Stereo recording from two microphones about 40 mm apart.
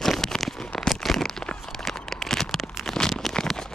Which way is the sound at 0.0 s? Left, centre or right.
Centre.